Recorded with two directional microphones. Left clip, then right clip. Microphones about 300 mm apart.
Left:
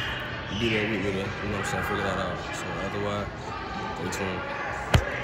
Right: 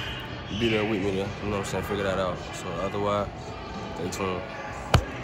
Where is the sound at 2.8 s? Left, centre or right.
Centre.